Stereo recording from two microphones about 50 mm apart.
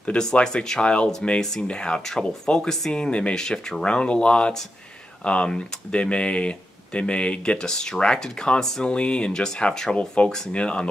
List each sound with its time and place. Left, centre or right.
0.0 s speech: centre
8.9 s speech: left